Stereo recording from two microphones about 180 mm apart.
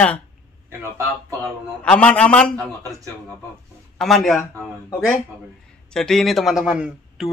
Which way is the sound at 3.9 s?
Centre (ahead or behind).